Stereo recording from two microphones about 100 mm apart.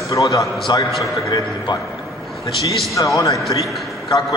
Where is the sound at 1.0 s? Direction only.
45° left (ahead or behind).